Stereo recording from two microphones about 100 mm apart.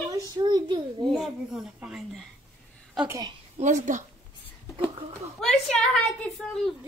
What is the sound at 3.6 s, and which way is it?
Speech, 90° right.